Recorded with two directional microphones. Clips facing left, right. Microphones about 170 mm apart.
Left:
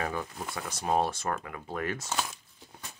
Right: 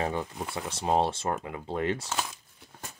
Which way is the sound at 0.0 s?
25° right (ahead or behind).